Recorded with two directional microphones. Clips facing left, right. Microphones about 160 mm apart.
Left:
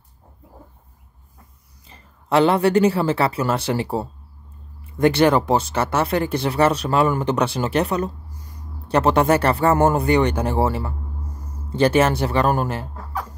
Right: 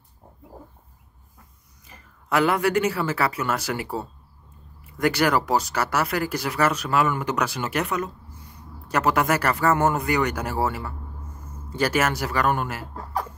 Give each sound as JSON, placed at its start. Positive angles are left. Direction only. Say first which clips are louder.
{"t": 1.9, "sound": "speech", "louder": "left 4 dB", "side_deg": 30}